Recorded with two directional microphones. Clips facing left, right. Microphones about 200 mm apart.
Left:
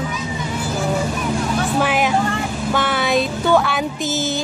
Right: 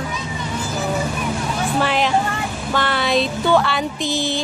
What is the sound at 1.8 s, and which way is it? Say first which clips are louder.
A woman's voice: right 1 dB; 10° left (ahead or behind).